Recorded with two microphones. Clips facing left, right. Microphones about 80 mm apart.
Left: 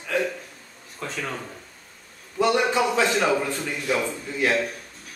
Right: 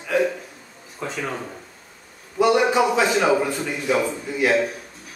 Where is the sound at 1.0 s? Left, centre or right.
Centre.